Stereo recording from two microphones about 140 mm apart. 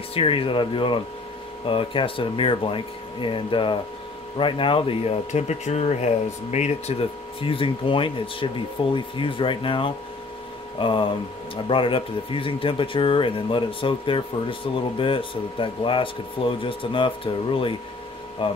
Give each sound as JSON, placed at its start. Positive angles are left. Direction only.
{"t": 0.1, "sound": "speech", "side_deg": 40}